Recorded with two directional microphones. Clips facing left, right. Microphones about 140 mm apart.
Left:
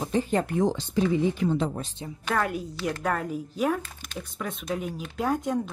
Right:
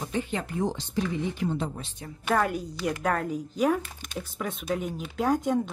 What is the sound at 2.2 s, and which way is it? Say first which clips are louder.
Speech: right 2 dB; centre (ahead or behind).